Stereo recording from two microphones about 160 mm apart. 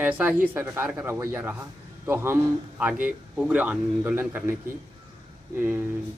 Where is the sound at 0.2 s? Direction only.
10° right (ahead or behind).